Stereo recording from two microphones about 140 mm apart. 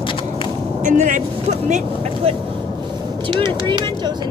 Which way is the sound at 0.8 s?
65° right (ahead or behind).